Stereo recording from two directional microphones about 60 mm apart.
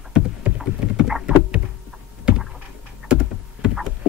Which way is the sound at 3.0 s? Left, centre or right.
Centre.